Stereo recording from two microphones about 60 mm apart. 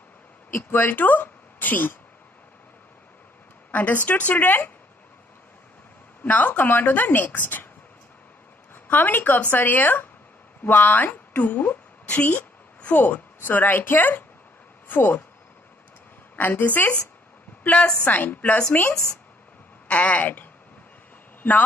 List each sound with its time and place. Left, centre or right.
0.5 s speech: left
3.7 s a woman's voice: left
6.2 s a woman's voice: left
8.8 s a woman's voice: left
16.3 s a woman's voice: left